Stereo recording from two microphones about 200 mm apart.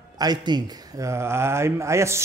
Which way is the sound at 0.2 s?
20° right (ahead or behind).